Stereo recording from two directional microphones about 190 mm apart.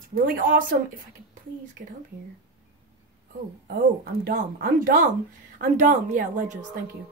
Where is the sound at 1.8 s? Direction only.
55° right (ahead or behind).